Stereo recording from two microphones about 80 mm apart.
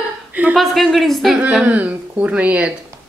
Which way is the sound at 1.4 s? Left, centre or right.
Centre.